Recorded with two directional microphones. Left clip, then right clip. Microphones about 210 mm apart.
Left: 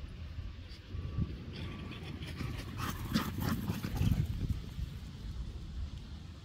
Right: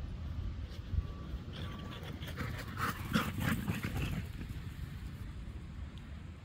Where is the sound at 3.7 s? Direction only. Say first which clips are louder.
Even; 10° right (ahead or behind).